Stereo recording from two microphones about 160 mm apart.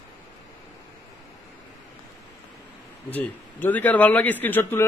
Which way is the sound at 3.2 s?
10° left (ahead or behind).